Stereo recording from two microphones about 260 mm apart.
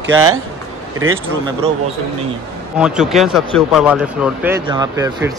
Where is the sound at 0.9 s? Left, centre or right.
Right.